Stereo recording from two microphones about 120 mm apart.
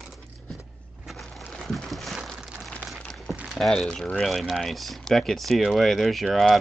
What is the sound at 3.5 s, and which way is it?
Speech, 5° left (ahead or behind).